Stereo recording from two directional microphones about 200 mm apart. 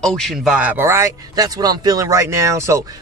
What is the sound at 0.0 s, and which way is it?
Speech, centre (ahead or behind).